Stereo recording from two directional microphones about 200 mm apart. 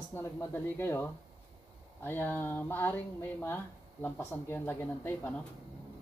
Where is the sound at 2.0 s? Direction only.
10° left (ahead or behind).